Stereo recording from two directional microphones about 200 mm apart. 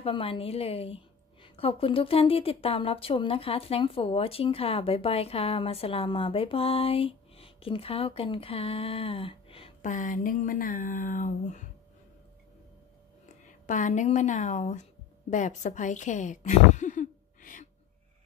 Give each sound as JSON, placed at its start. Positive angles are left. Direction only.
{"t": 0.0, "sound": "a woman's voice", "side_deg": 25}
{"t": 13.7, "sound": "speech", "side_deg": 40}